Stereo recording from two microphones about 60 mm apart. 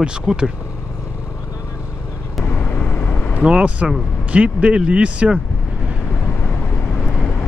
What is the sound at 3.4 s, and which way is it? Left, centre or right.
Speech, centre.